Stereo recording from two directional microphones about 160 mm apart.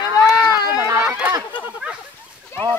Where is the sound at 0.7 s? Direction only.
15° right (ahead or behind).